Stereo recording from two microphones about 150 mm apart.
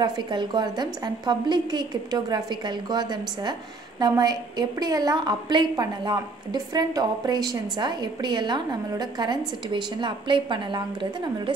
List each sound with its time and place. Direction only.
0.0 s a woman's voice: 30° right (ahead or behind)